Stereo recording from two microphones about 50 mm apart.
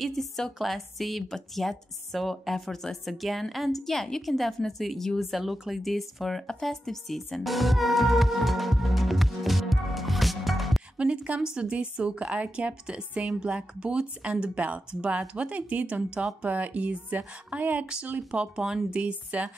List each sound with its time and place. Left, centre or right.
0.0 s a woman's voice: centre
6.6 s music: centre
11.0 s a woman's voice: right
18.3 s a woman's voice: centre